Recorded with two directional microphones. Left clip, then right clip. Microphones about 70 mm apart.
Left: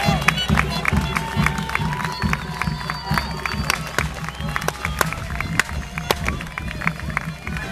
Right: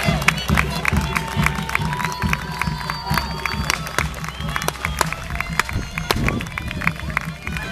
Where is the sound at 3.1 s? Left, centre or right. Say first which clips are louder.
Right 1 dB; right.